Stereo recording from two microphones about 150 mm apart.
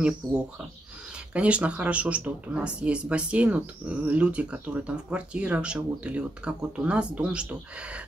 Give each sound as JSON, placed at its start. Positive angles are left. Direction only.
{"t": 0.2, "sound": "speech", "side_deg": -25}
{"t": 1.1, "sound": "speech", "side_deg": -10}